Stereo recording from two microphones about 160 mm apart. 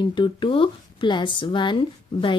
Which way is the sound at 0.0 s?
30° left (ahead or behind).